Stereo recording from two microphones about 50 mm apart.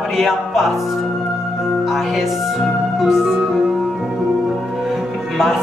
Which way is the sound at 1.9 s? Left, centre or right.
Centre.